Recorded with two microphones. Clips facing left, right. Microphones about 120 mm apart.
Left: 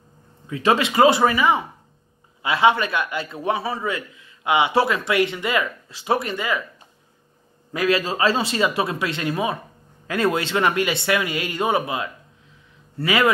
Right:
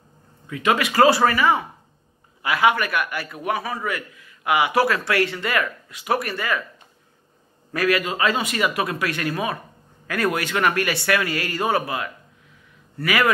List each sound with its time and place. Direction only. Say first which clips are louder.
0.5 s a man's voice: left 2 dB; 30° left (ahead or behind)
7.7 s a man's voice: even; 20° left (ahead or behind)
8.0 s a man's voice: left 2 dB; 30° left (ahead or behind)